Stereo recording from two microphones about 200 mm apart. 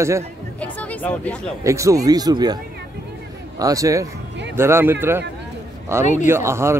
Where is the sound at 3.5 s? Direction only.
15° right (ahead or behind).